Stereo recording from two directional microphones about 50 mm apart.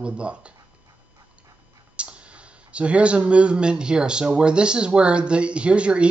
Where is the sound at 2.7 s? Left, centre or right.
Right.